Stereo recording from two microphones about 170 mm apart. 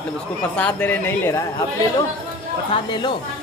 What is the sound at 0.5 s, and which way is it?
Speech, 10° left (ahead or behind).